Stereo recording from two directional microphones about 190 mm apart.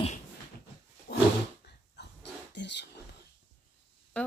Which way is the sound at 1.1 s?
60° left (ahead or behind).